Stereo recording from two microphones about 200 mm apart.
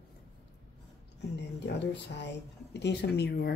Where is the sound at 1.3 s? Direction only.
60° left (ahead or behind).